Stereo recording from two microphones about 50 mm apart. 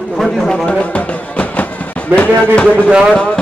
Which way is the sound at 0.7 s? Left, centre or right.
Left.